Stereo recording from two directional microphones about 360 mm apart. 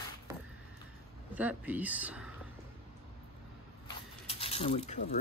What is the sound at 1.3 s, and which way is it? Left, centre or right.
Speech, centre.